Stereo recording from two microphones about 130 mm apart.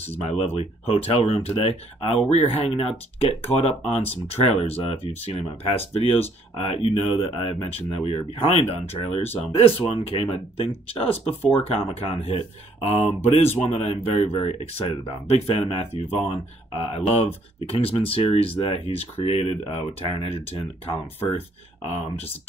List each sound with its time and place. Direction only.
0.2 s speech: 55° left (ahead or behind)